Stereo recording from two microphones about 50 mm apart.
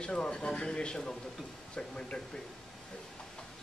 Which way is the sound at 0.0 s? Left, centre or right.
Centre.